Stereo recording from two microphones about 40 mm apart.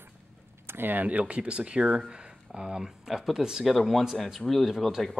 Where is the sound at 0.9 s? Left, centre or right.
Right; by 3.6 s centre.